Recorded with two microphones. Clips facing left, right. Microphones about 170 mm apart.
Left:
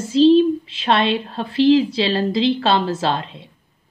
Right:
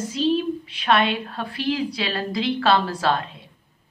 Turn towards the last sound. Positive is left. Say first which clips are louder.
# left 1 dB
turn(degrees=25)  # may be behind; listen again after turning